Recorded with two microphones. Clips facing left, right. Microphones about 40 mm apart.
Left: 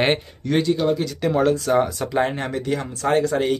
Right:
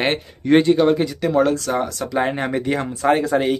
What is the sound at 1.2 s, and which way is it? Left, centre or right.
Speech, centre.